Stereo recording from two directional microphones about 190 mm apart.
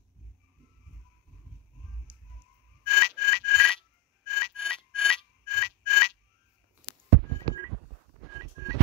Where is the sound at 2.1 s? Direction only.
10° right (ahead or behind).